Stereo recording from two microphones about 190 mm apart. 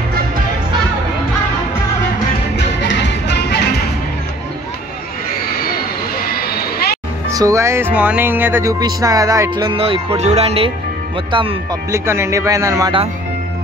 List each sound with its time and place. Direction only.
2.5 s music: 70° left (ahead or behind)
6.1 s a sound: 50° left (ahead or behind)
7.2 s speech: 15° right (ahead or behind)
11.9 s speech: 15° right (ahead or behind)